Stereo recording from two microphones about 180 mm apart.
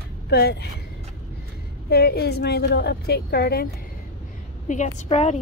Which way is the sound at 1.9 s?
60° left (ahead or behind).